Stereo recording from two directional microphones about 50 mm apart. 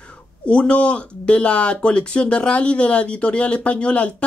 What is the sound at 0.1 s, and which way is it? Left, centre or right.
Speech, left.